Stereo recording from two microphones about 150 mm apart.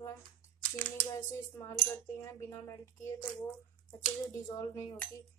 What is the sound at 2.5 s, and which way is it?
Speech, 20° left (ahead or behind).